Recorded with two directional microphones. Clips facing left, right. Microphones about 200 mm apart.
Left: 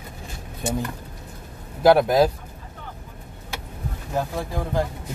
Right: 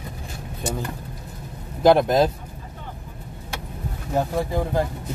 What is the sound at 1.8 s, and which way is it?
Speech, 5° left (ahead or behind).